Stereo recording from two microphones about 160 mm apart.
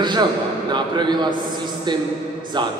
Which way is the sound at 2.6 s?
30° right (ahead or behind).